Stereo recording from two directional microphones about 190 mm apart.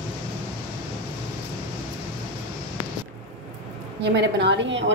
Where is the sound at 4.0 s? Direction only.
65° right (ahead or behind).